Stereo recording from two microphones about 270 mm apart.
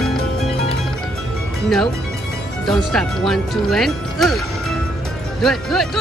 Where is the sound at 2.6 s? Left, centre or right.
Centre.